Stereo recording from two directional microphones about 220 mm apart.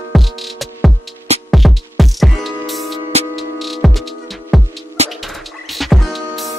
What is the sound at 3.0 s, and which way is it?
Music, 30° right (ahead or behind).